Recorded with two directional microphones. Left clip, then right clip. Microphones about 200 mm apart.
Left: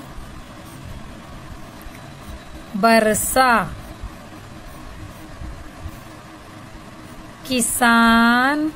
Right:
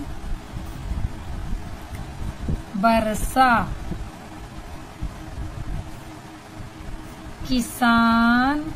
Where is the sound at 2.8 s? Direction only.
45° left (ahead or behind).